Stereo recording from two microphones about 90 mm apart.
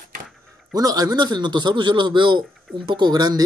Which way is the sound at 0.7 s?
45° right (ahead or behind).